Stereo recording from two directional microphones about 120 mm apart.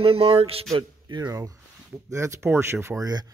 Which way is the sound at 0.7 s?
40° right (ahead or behind).